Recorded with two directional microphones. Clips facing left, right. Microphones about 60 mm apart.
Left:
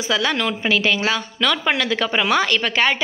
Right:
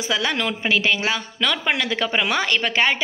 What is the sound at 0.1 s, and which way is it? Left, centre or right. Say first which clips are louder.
A woman's voice: left 2 dB; centre.